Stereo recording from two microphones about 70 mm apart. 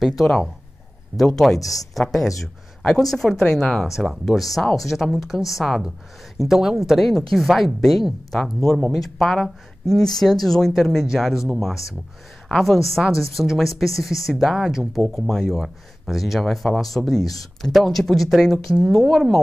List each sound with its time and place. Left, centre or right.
0.2 s speech: centre
1.6 s speech: left
2.0 s speech: centre
3.8 s speech: centre
15.0 s speech: centre